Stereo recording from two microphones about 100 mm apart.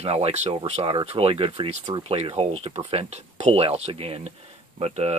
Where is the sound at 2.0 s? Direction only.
85° right.